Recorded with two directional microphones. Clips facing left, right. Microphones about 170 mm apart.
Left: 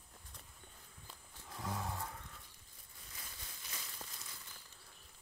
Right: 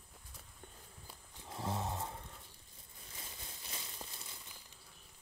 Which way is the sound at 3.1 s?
25° right (ahead or behind).